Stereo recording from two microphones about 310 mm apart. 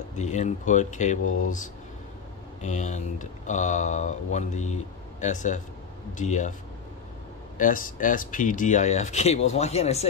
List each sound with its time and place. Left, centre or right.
0.2 s speech: left
2.6 s speech: left
7.5 s speech: left